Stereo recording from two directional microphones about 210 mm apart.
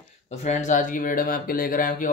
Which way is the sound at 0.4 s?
35° left (ahead or behind).